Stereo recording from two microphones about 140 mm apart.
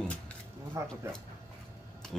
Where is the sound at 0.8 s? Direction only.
20° right (ahead or behind).